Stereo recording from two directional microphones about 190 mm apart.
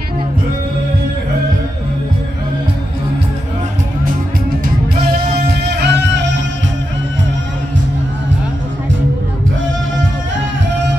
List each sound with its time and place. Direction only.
5.8 s music: 65° right (ahead or behind)